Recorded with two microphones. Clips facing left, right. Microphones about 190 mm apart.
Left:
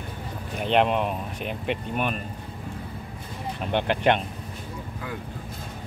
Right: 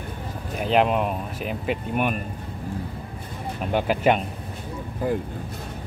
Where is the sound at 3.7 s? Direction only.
5° right (ahead or behind).